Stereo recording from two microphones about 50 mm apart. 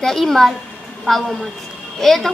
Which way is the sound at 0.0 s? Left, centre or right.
Centre.